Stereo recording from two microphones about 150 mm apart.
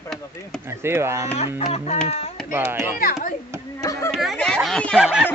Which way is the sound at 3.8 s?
20° left (ahead or behind).